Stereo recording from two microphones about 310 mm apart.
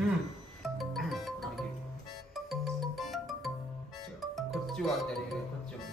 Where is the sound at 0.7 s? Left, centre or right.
Centre.